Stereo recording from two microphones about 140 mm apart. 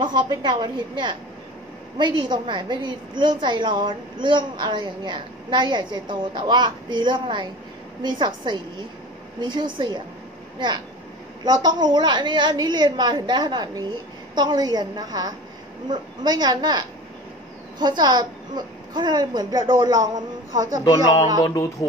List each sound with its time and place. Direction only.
0.0 s a woman's voice: 35° right (ahead or behind)
11.4 s a woman's voice: 30° right (ahead or behind)
20.9 s speech: 25° left (ahead or behind)